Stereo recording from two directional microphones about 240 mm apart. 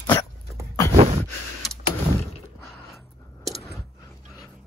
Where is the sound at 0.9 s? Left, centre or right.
Right.